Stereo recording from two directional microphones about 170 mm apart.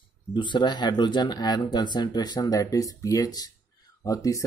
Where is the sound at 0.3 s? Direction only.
25° left (ahead or behind).